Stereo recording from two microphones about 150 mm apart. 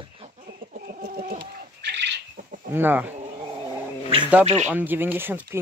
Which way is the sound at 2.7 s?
15° right (ahead or behind).